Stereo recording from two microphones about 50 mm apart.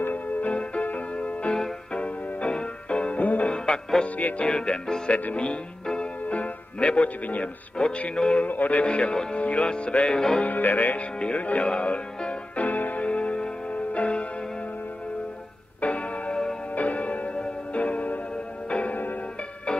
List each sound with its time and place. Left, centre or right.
0.0 s music: left
3.5 s music: centre
5.1 s speech: left
8.5 s speech: left; by 10.4 s centre
10.4 s music: left
11.1 s speech: left
12.6 s music: left
15.8 s music: left